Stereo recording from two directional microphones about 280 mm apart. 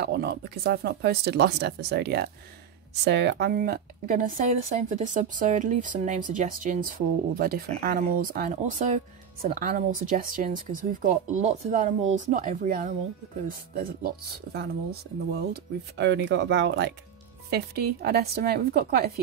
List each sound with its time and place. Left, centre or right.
0.0 s speech: right